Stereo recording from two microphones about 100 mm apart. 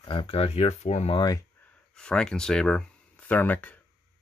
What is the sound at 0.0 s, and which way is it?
Speech, 55° left (ahead or behind).